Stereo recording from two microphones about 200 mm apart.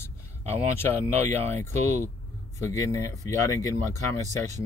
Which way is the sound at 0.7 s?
10° left (ahead or behind).